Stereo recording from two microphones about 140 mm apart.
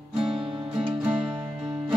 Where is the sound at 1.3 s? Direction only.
35° right (ahead or behind).